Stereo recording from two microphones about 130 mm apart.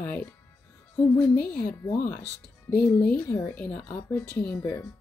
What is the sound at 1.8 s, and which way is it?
Speech, 20° left (ahead or behind).